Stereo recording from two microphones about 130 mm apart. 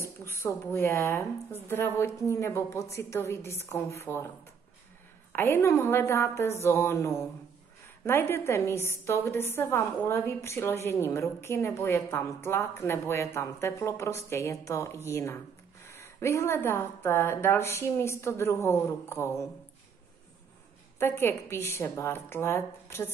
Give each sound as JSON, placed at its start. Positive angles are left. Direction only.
{"t": 0.0, "sound": "a woman's voice", "side_deg": 20}
{"t": 5.3, "sound": "a woman's voice", "side_deg": 20}
{"t": 21.0, "sound": "a woman's voice", "side_deg": 15}